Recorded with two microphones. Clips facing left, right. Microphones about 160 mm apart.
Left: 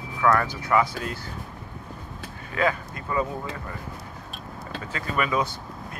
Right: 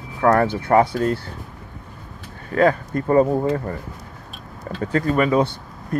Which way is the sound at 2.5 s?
45° right (ahead or behind).